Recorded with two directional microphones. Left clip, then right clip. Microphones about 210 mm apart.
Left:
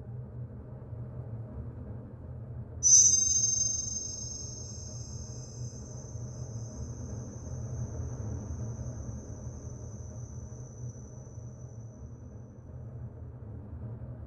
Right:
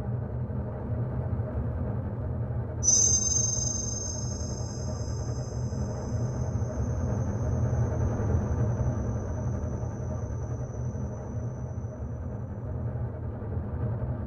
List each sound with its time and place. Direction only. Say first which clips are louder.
2.8 s music: left 2 dB; centre (ahead or behind)